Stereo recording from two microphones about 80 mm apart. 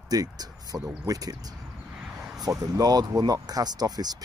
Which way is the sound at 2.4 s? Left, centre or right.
Right.